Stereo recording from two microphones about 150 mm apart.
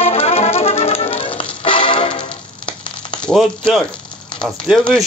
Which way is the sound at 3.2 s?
Centre (ahead or behind).